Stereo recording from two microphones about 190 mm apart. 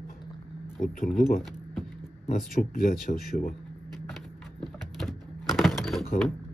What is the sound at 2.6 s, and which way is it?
Speech, 45° left (ahead or behind).